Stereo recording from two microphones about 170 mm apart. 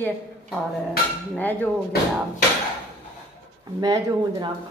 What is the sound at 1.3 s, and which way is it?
Speech, 10° left (ahead or behind).